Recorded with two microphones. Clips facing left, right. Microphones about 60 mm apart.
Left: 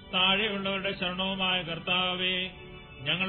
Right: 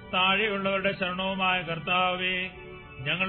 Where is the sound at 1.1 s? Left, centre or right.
Right.